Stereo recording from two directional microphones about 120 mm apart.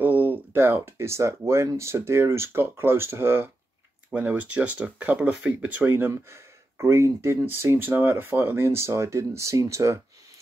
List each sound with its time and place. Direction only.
0.0 s speech: 15° right (ahead or behind)